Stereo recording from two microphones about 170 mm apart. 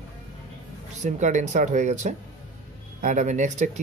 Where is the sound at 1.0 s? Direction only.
45° right (ahead or behind).